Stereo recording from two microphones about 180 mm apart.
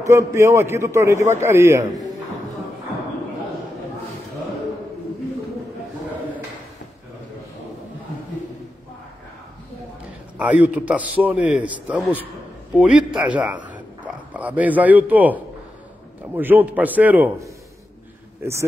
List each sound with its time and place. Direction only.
0.0 s a man's voice: 15° right (ahead or behind)
10.3 s a man's voice: 10° right (ahead or behind)
18.4 s a man's voice: 15° right (ahead or behind)